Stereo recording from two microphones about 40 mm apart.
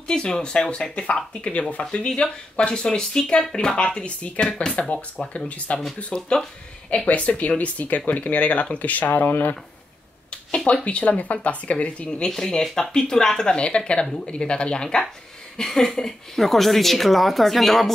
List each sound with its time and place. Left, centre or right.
0.1 s speech: left
6.1 s speech: left
7.1 s speech: left
10.9 s speech: left
12.3 s speech: centre
15.5 s speech: centre